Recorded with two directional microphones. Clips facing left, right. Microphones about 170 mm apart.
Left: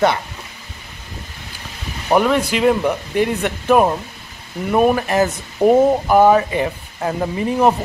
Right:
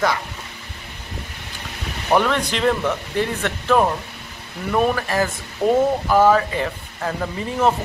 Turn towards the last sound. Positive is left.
turn(degrees=15)  # may be behind; listen again after turning